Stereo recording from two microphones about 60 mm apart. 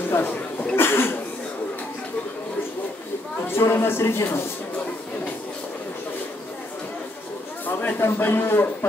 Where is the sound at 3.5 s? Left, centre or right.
Left.